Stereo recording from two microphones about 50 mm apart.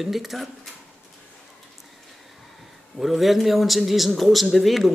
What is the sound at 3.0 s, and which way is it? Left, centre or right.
Speech, centre.